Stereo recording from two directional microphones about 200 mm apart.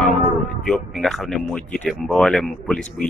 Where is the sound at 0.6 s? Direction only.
Centre (ahead or behind).